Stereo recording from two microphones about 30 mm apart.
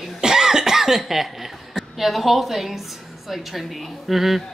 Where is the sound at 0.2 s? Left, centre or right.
Centre.